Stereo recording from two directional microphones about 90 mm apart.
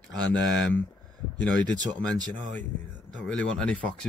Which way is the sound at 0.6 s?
15° left (ahead or behind).